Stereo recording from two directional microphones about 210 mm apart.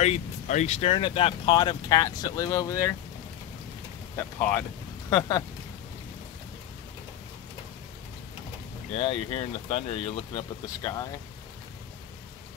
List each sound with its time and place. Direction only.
0.0 s speech: 35° left (ahead or behind); by 2.9 s 15° left (ahead or behind)
4.2 s speech: 10° left (ahead or behind)
8.9 s speech: 25° left (ahead or behind)